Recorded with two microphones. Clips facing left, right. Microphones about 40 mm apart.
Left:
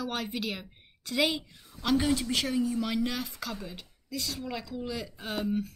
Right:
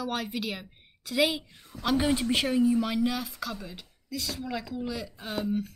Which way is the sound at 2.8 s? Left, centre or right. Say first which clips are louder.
Right 2 dB; centre.